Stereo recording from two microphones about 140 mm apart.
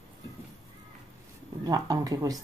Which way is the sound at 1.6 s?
25° right (ahead or behind).